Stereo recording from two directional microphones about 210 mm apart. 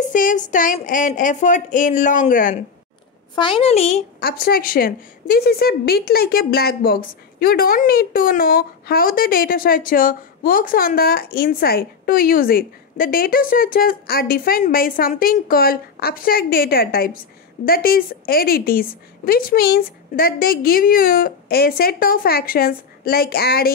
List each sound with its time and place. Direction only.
0.1 s speech: 40° left (ahead or behind)
3.3 s a woman's voice: 25° left (ahead or behind)
4.2 s a woman's voice: 45° left (ahead or behind)